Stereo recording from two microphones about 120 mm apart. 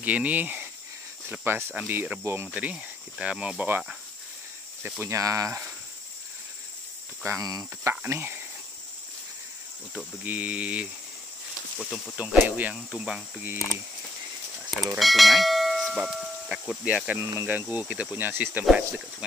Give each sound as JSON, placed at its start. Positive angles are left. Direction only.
{"t": 0.0, "sound": "speech", "side_deg": -10}
{"t": 5.0, "sound": "speech", "side_deg": -25}
{"t": 7.2, "sound": "speech", "side_deg": -30}
{"t": 7.9, "sound": "speech", "side_deg": -20}
{"t": 10.2, "sound": "speech", "side_deg": -15}
{"t": 12.2, "sound": "speech", "side_deg": -10}
{"t": 15.0, "sound": "speech", "side_deg": 0}